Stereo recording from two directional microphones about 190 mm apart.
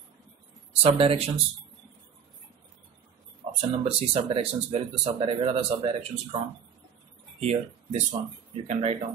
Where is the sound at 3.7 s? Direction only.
30° right (ahead or behind).